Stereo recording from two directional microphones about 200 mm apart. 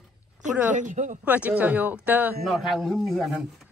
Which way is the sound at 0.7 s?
40° right (ahead or behind).